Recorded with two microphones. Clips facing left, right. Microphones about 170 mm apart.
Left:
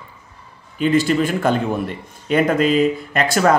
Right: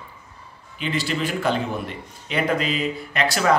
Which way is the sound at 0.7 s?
45° left (ahead or behind).